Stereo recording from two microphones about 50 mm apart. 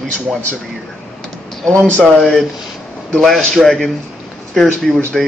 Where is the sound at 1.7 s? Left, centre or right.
Left.